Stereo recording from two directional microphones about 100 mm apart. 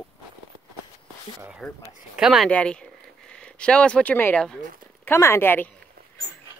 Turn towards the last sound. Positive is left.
turn(degrees=20)  # may be behind; listen again after turning